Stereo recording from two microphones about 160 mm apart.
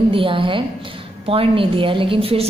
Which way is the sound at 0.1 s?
35° right (ahead or behind).